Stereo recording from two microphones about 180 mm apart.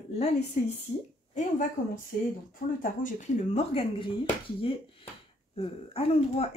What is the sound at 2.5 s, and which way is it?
Speech, 50° left (ahead or behind).